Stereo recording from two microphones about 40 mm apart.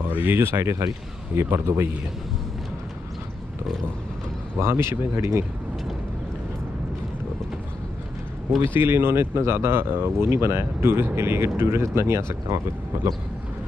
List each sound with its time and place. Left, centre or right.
0.0 s a sound: right
0.4 s speech: right
4.6 s speech: right
8.6 s speech: right
11.1 s speech: right